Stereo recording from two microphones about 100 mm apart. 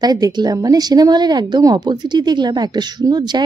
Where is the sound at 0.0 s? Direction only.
40° right (ahead or behind).